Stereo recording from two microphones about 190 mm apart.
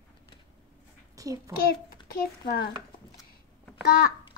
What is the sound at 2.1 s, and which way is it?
Speech, 50° left (ahead or behind).